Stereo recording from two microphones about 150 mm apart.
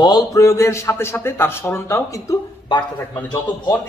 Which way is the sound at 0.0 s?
25° left (ahead or behind).